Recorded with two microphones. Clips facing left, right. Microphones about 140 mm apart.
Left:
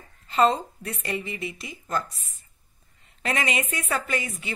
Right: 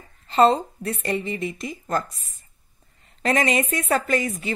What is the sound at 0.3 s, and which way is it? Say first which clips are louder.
A woman's voice: right 4 dB; 35° right (ahead or behind).